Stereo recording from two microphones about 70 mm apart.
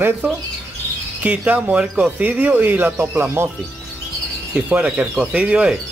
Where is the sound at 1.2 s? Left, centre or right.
Right.